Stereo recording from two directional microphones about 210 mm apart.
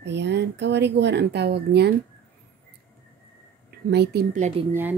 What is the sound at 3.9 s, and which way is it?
Speech, 50° right (ahead or behind).